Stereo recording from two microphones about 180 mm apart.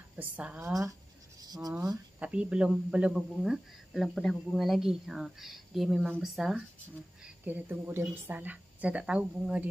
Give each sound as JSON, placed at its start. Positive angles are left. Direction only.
{"t": 0.1, "sound": "a woman's voice", "side_deg": -10}
{"t": 1.4, "sound": "speech", "side_deg": -20}
{"t": 2.1, "sound": "a woman's voice", "side_deg": -5}